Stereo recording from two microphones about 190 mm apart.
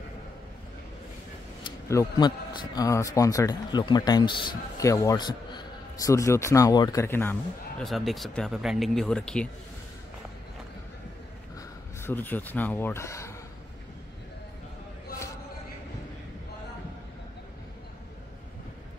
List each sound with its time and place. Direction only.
1.6 s a man's voice: 20° left (ahead or behind)
7.8 s speech: centre (ahead or behind)
12.0 s a man's voice: 10° left (ahead or behind)